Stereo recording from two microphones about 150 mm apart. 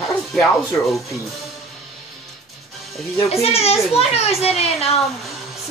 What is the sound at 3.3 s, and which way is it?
A child's voice, 45° left (ahead or behind).